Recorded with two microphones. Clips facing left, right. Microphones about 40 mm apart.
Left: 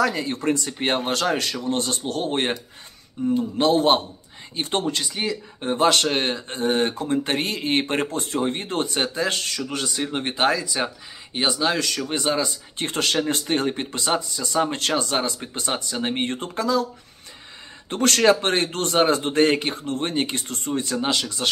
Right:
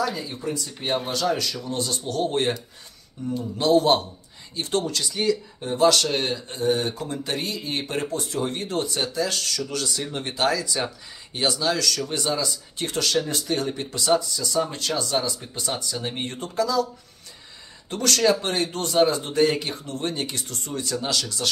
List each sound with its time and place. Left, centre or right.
0.0 s speech: left
5.6 s speech: left
14.6 s speech: left
17.8 s speech: left